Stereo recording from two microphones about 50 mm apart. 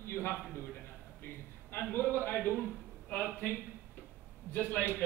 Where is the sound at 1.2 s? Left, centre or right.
Left.